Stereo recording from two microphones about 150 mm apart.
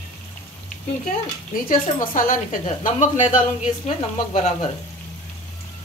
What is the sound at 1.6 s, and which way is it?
A woman's voice, 65° left (ahead or behind).